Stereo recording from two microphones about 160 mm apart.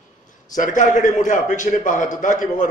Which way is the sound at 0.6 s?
55° left (ahead or behind).